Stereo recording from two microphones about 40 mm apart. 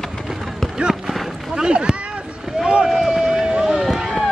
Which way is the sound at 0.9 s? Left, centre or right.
Centre.